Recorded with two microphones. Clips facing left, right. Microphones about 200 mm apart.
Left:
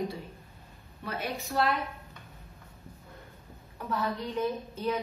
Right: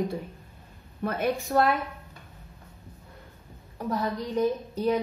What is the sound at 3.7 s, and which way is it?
A woman's voice, 40° right (ahead or behind).